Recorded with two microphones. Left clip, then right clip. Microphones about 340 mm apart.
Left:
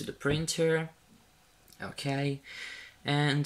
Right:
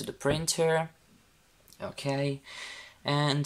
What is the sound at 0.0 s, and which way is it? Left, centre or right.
Speech, centre.